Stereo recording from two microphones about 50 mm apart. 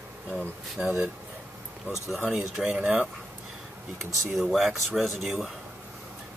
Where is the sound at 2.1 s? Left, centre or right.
Centre.